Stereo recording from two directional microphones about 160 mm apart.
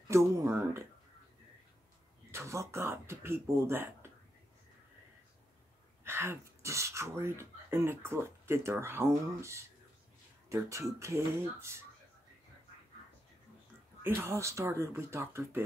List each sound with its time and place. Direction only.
0.1 s speech: 15° right (ahead or behind)
2.3 s speech: 20° right (ahead or behind)
6.0 s speech: 15° right (ahead or behind)
14.0 s speech: 15° right (ahead or behind)